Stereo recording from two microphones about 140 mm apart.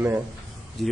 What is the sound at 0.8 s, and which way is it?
Speech, centre (ahead or behind).